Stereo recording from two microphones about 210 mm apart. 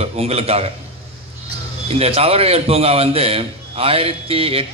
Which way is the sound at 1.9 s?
30° right (ahead or behind).